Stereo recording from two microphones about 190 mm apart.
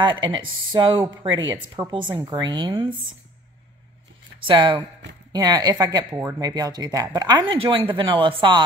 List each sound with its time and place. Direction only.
0.0 s speech: 25° right (ahead or behind)
4.4 s speech: 25° right (ahead or behind)
6.1 s speech: 10° right (ahead or behind)